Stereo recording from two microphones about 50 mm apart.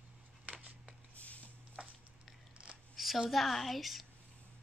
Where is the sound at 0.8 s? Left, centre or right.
Left.